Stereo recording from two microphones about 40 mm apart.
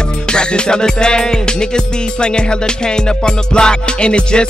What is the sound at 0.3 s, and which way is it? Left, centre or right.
Music, left.